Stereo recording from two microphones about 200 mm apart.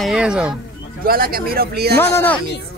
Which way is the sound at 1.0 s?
50° right (ahead or behind).